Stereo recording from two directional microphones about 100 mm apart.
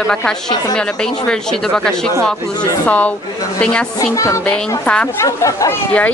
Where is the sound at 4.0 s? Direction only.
35° left (ahead or behind).